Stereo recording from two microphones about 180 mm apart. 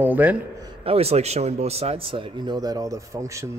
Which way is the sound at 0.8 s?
35° right (ahead or behind).